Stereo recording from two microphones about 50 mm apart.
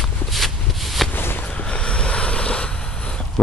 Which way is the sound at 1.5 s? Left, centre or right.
Left.